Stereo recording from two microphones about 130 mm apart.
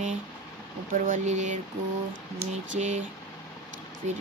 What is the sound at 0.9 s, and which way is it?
Speech, 90° right.